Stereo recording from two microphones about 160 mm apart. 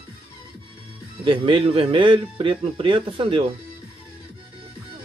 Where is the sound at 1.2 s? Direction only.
30° right (ahead or behind).